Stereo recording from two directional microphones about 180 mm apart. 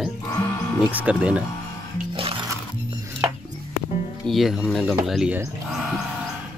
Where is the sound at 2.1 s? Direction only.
25° right (ahead or behind).